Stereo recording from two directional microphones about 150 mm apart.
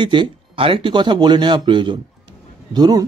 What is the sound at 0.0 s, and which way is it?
A man's voice, 30° right (ahead or behind).